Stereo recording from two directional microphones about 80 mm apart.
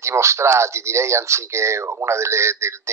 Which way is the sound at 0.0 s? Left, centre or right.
Right.